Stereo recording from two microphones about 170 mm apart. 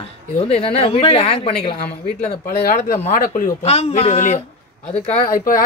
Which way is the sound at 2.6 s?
60° left (ahead or behind).